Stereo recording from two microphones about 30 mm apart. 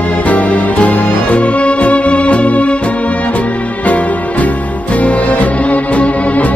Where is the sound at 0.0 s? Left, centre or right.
Left.